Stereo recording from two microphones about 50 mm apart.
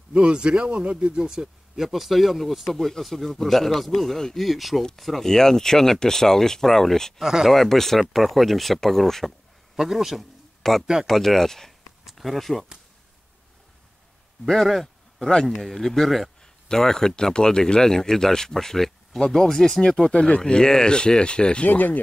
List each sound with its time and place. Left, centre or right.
0.1 s speech: centre
1.9 s speech: centre
7.2 s speech: centre
7.5 s speech: centre
9.8 s speech: centre
10.6 s speech: centre
14.4 s speech: centre
21.6 s speech: left